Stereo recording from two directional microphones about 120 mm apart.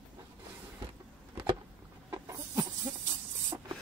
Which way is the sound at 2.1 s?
25° right (ahead or behind).